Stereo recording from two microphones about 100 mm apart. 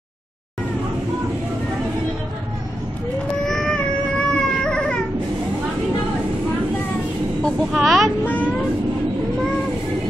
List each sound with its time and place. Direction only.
3.4 s a sound: 5° left (ahead or behind)
4.3 s cat: 10° left (ahead or behind)
7.4 s speech: centre (ahead or behind)
8.3 s speech: 15° left (ahead or behind)